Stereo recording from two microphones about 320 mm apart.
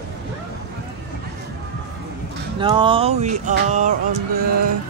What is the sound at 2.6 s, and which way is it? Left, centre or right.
Speech, centre.